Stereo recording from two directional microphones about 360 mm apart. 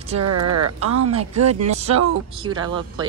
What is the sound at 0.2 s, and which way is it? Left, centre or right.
Speech, right.